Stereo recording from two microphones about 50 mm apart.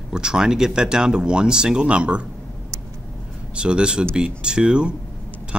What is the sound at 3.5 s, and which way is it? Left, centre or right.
Speech, centre.